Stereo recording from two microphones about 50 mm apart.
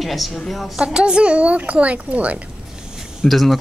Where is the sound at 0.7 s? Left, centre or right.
Centre.